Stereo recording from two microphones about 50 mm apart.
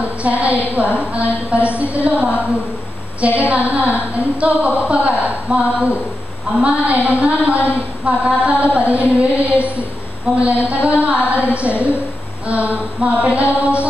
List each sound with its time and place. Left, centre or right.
0.2 s a woman's voice: right